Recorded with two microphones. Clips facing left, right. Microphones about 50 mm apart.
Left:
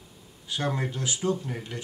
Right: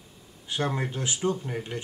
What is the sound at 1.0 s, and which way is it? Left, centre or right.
Speech, right.